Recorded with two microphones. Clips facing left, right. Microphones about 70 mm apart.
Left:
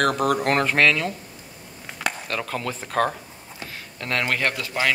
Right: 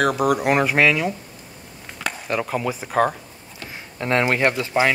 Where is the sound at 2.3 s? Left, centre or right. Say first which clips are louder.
Right 4 dB; centre.